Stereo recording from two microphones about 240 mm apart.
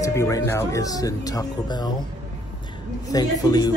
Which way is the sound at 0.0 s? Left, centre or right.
Centre.